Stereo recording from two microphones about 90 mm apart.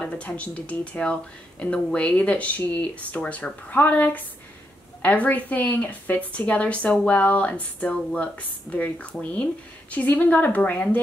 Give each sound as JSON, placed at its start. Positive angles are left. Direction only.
{"t": 0.0, "sound": "speech", "side_deg": 15}